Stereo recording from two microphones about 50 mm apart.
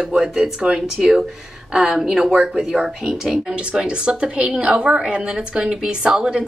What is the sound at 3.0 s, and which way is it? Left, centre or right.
A woman's voice, centre.